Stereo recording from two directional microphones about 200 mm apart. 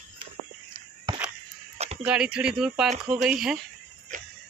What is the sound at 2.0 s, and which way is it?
Speech, 5° right (ahead or behind).